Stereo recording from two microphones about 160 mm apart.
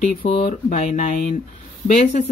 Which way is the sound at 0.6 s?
50° left (ahead or behind).